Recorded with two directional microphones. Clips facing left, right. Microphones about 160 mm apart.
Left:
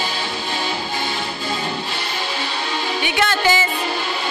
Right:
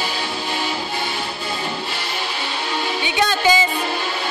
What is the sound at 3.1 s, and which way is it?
Music, 15° right (ahead or behind).